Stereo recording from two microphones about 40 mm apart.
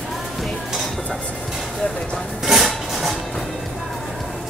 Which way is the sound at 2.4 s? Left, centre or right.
Centre.